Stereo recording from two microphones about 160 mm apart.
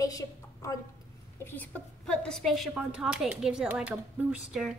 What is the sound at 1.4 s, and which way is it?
A woman's voice, 10° left (ahead or behind).